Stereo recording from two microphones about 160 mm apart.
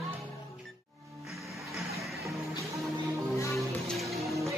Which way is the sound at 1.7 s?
Centre (ahead or behind).